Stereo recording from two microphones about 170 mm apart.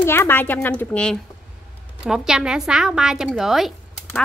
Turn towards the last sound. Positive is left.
turn(degrees=0)  # may be behind; listen again after turning